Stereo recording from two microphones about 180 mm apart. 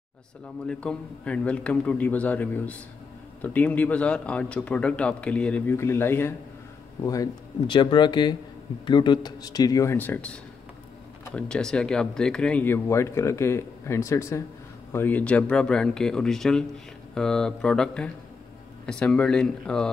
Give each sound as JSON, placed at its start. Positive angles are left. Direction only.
{"t": 0.7, "sound": "speech", "side_deg": 5}
{"t": 7.1, "sound": "speech", "side_deg": 25}